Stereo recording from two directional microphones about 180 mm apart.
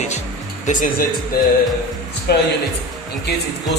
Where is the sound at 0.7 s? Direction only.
45° left (ahead or behind).